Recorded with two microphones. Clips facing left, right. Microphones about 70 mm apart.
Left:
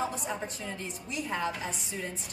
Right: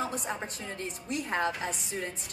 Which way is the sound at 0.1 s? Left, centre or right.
Right.